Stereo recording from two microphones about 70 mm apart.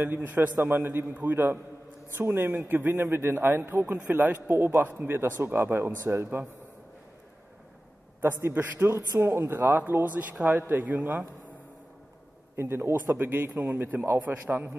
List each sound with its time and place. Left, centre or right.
0.0 s a man's voice: right
8.2 s a man's voice: right
12.5 s a man's voice: right